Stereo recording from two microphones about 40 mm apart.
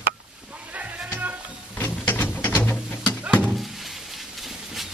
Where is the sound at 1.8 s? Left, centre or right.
Left.